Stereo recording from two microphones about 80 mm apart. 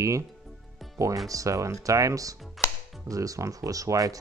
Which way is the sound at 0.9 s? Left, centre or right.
Right.